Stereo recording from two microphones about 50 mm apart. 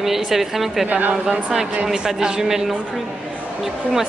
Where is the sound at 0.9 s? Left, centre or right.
Right.